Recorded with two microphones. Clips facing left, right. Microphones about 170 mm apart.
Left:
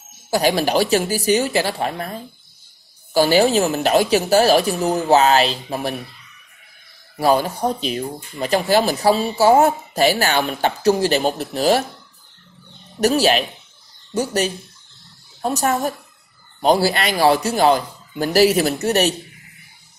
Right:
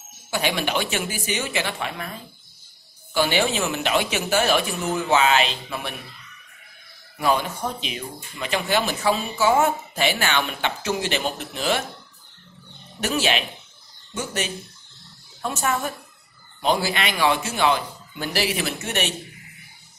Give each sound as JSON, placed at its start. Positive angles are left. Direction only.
{"t": 0.3, "sound": "speech", "side_deg": 35}
{"t": 7.2, "sound": "speech", "side_deg": 35}
{"t": 13.0, "sound": "speech", "side_deg": 40}